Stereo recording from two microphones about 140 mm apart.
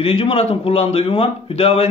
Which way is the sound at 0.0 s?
40° left (ahead or behind).